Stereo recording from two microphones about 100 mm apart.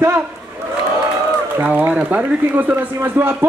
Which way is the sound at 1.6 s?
15° right (ahead or behind).